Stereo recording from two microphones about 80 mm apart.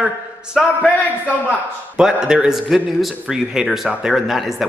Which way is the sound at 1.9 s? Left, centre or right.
Centre.